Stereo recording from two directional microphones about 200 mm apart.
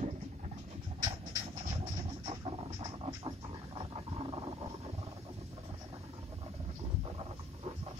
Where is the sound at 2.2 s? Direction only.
30° right (ahead or behind).